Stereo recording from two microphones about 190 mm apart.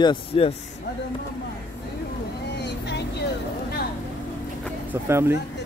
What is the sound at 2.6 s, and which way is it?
Vehicle, 60° left (ahead or behind).